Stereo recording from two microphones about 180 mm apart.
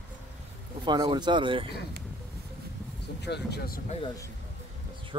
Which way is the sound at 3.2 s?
70° left (ahead or behind).